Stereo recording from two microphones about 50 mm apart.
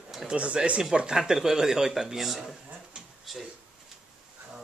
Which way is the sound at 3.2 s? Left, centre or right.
Centre.